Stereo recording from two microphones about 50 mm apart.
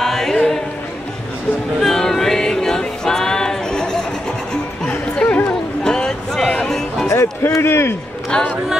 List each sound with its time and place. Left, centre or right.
0.0 s music: centre
1.8 s music: centre
4.8 s music: left
5.9 s a sound: centre
7.1 s music: left
8.3 s music: centre